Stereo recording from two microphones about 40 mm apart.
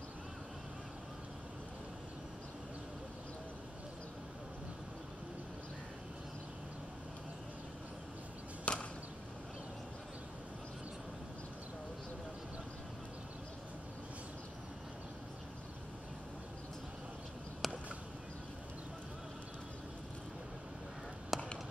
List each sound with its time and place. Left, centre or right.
8.7 s whip: left
17.6 s a sound: centre
21.3 s chop: centre